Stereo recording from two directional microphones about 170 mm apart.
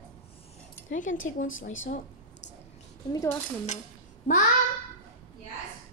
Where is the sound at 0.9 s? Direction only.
50° left (ahead or behind).